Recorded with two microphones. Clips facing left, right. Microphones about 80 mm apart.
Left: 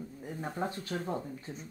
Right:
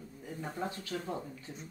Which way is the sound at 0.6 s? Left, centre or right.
Left.